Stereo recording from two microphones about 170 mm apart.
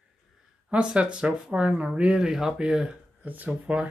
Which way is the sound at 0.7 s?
5° right (ahead or behind).